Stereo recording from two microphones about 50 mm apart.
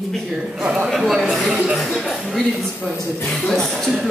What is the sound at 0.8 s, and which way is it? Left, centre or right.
Speech, centre.